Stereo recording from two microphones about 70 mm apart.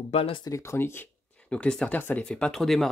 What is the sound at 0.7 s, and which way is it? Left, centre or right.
Speech, left.